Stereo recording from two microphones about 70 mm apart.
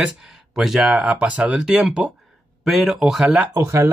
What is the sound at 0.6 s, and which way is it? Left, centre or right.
Speech, centre.